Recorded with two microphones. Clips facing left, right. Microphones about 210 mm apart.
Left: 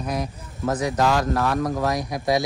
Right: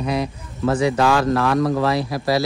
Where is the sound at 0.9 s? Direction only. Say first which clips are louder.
Right 3 dB; 90° right.